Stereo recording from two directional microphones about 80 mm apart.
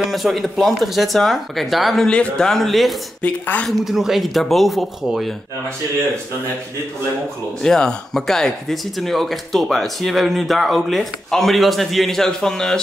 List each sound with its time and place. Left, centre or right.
0.0 s speech: centre
2.0 s speech: centre
3.2 s speech: centre
3.6 s speech: centre
7.6 s speech: centre